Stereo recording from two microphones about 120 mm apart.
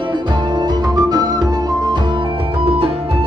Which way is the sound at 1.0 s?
35° right (ahead or behind).